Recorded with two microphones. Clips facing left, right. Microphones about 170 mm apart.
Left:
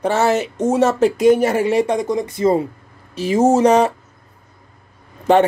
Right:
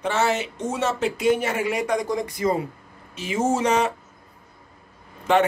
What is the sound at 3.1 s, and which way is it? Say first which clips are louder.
Speech: left 9 dB; 35° left (ahead or behind).